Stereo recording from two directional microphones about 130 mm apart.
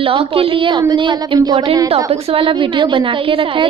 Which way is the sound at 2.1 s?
50° right (ahead or behind).